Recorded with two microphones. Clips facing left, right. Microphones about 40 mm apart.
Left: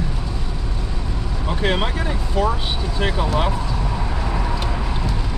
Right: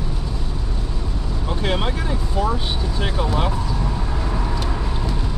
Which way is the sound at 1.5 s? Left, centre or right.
Centre.